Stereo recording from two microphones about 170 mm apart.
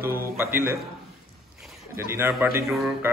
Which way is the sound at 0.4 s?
15° right (ahead or behind).